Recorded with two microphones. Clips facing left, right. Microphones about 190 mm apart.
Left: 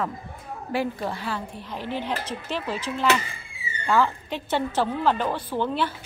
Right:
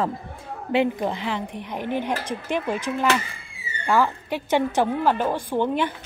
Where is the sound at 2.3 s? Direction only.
50° right (ahead or behind).